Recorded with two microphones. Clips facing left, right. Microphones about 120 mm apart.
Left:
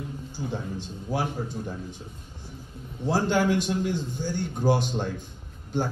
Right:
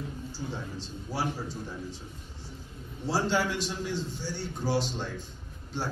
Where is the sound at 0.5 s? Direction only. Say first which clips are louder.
Left 4 dB; 55° left (ahead or behind).